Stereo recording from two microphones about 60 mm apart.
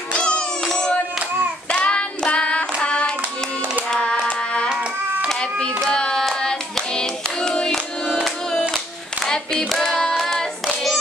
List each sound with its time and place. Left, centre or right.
0.1 s music: centre
0.7 s a sound: centre
1.7 s child singing: centre
3.9 s music: centre
5.9 s hands: centre
8.7 s clapping: centre
9.7 s music: centre
10.1 s hands: centre